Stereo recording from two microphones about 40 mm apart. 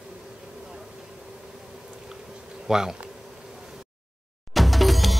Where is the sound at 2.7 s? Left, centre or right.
Centre.